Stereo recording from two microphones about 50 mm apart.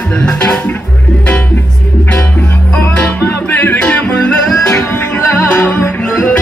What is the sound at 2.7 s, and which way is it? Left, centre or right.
Music, left.